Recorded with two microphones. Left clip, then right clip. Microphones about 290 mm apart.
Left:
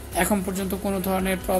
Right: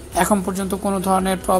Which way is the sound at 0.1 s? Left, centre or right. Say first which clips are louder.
Right 5 dB; centre.